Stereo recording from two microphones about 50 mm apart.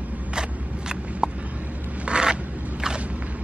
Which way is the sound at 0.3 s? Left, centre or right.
Centre.